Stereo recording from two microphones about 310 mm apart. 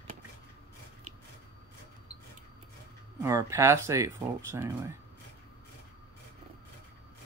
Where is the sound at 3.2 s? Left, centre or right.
Centre.